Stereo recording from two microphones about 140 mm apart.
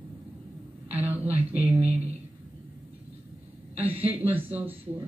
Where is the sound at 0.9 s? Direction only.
10° right (ahead or behind).